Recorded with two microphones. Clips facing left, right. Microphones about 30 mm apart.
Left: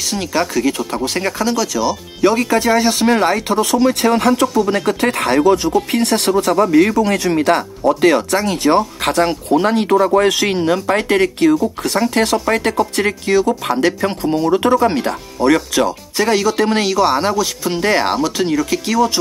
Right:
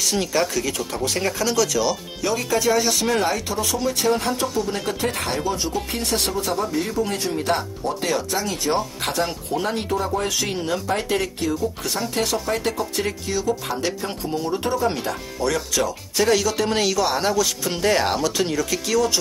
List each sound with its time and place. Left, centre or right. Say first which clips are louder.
0.1 s speech: left 6 dB; centre
2.2 s speech: left 7 dB; left
3.6 s speech: left 6 dB; left
15.3 s speech: left 10 dB; left
16.2 s speech: left 4 dB; left
17.3 s speech: left 4 dB; centre
17.8 s speech: left 4 dB; left
18.1 s speech: left 5 dB; centre